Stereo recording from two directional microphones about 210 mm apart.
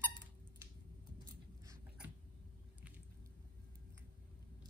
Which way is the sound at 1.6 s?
15° right (ahead or behind).